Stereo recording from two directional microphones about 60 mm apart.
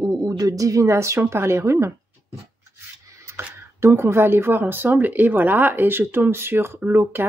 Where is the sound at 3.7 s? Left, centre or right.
Right.